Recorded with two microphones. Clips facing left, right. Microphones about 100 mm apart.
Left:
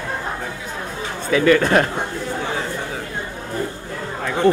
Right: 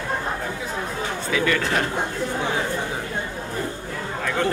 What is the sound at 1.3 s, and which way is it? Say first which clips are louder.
Speech: left 8 dB; 50° left (ahead or behind).